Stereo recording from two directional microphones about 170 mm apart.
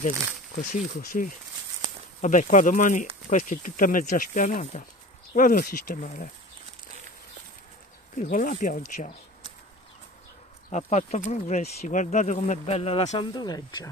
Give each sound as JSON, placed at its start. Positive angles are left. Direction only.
{"t": 0.6, "sound": "speech", "side_deg": 50}
{"t": 8.2, "sound": "speech", "side_deg": 50}
{"t": 10.7, "sound": "speech", "side_deg": 45}
{"t": 13.3, "sound": "speech", "side_deg": 25}